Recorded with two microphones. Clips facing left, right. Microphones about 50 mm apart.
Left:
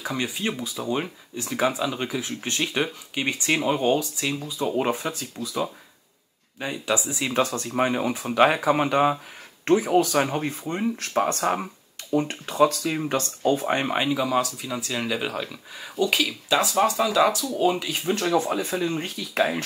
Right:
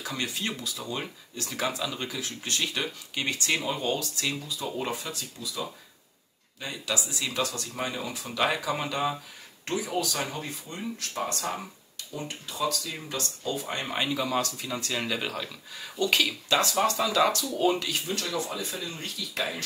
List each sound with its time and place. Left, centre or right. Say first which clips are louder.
0.0 s speech: left 5 dB; centre
4.7 s speech: left 8 dB; left
13.8 s speech: left 5 dB; centre
18.3 s speech: left 9 dB; left